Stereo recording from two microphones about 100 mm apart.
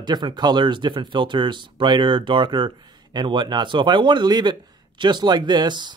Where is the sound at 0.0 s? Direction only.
50° right (ahead or behind).